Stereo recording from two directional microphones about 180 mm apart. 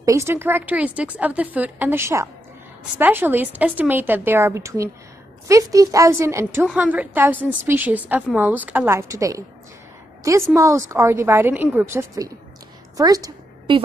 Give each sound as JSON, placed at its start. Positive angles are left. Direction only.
{"t": 0.0, "sound": "a woman's voice", "side_deg": -15}
{"t": 10.5, "sound": "a woman's voice", "side_deg": -15}
{"t": 12.9, "sound": "a sound", "side_deg": -20}